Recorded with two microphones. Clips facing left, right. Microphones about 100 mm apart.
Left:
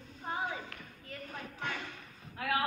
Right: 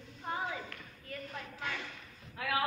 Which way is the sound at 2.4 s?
35° left (ahead or behind).